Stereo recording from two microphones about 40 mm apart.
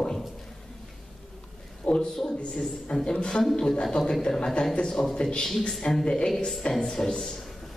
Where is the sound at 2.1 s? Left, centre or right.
Centre.